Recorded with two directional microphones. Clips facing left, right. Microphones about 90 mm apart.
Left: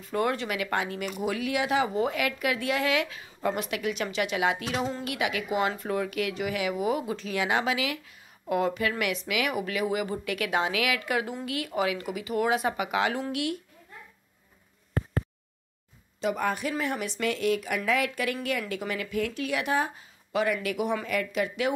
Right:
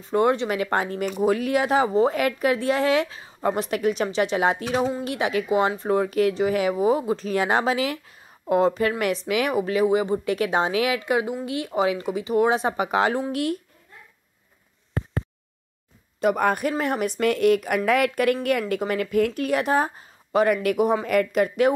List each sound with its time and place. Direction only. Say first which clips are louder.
0.0 s speech: right 7 dB; 25° right (ahead or behind)
16.2 s speech: right 7 dB; 55° right (ahead or behind)